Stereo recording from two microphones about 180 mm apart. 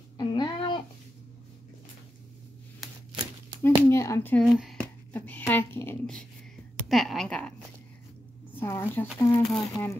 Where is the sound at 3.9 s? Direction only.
15° left (ahead or behind).